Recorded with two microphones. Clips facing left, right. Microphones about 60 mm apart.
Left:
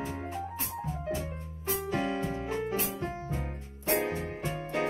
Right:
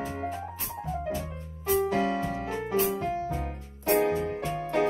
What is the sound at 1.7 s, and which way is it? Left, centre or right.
Piano, right.